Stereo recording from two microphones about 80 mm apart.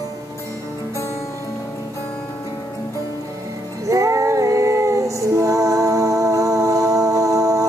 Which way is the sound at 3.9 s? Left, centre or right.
Right.